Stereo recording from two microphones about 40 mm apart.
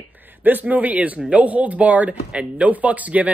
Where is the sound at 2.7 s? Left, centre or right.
Right.